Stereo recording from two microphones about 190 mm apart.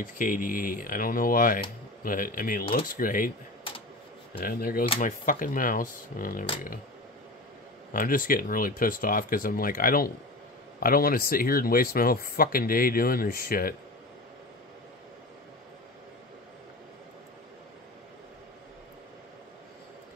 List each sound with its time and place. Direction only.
0.0 s speech: 45° left (ahead or behind)
4.4 s speech: 50° left (ahead or behind)
7.9 s speech: 45° left (ahead or behind)